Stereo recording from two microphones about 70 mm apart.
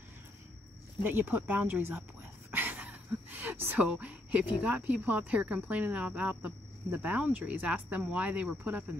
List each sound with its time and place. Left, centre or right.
1.0 s speech: right
2.5 s a sound: right
4.6 s speech: right